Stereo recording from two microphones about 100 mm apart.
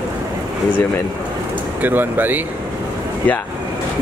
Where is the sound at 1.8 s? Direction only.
20° right (ahead or behind).